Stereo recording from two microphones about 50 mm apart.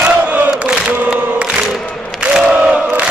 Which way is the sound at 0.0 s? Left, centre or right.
Right.